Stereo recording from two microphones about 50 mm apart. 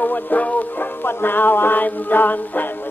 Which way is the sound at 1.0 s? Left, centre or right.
Left.